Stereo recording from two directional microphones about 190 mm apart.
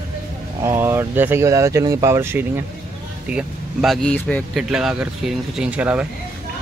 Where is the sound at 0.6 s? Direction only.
10° right (ahead or behind).